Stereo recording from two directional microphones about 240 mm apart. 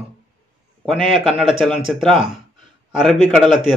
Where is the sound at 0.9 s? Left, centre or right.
Centre.